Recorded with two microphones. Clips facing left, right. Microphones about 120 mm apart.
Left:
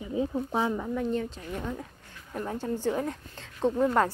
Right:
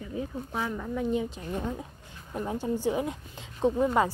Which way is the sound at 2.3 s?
15° right (ahead or behind).